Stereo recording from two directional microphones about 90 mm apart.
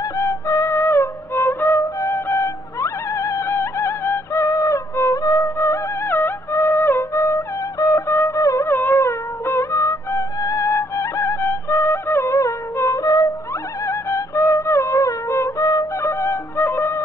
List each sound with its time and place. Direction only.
0.2 s music: 35° left (ahead or behind)